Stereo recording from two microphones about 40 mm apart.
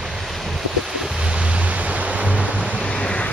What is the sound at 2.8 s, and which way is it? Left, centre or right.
Vehicle, left.